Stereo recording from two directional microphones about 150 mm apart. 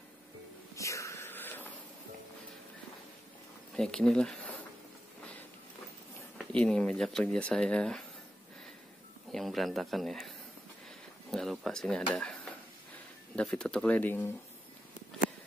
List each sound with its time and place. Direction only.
0.7 s wheeze: 20° left (ahead or behind)
3.7 s speech: 5° left (ahead or behind)
6.3 s speech: 5° left (ahead or behind)
9.3 s speech: centre (ahead or behind)
13.4 s speech: 5° left (ahead or behind)